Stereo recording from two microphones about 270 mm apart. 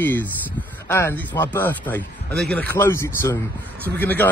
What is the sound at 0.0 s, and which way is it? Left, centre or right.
Speech, centre.